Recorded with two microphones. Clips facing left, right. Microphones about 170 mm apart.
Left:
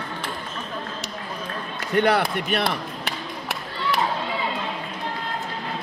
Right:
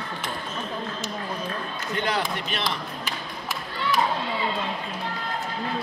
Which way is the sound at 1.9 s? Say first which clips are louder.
Left 7 dB; 60° left (ahead or behind).